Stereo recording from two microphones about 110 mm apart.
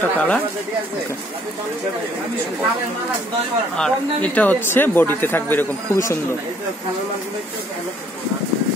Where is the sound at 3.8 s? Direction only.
10° left (ahead or behind); by 6.2 s 25° left (ahead or behind).